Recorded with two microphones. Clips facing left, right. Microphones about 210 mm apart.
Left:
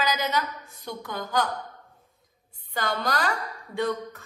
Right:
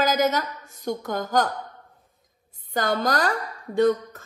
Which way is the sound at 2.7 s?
45° right (ahead or behind).